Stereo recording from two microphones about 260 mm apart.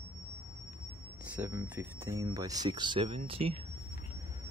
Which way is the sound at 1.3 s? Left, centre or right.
Centre.